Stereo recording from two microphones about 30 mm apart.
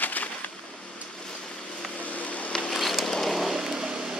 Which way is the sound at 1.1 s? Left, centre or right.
Left.